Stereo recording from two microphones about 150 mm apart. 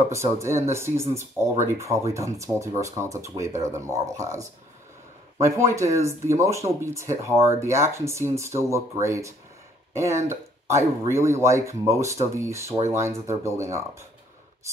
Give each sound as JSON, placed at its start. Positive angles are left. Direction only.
{"t": 0.1, "sound": "speech", "side_deg": -20}